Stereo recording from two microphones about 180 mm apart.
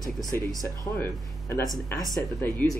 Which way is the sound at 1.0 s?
15° left (ahead or behind).